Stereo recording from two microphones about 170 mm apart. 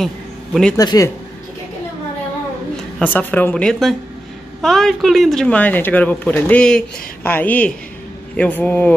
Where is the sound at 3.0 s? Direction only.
10° left (ahead or behind).